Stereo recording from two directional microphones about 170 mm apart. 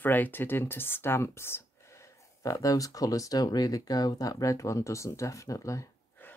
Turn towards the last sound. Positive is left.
turn(degrees=20)  # may be behind; listen again after turning